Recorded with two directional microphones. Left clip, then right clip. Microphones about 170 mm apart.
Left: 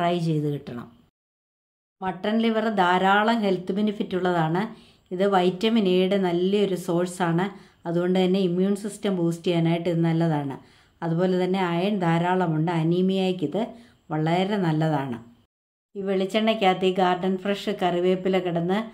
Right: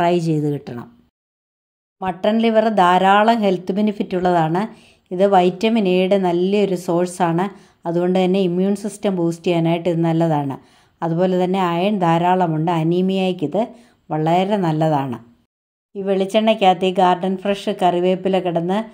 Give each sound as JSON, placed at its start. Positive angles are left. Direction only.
{"t": 0.0, "sound": "speech", "side_deg": -40}
{"t": 2.0, "sound": "speech", "side_deg": -45}